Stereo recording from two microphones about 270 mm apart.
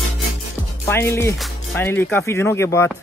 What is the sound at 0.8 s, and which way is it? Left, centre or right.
Speech, centre.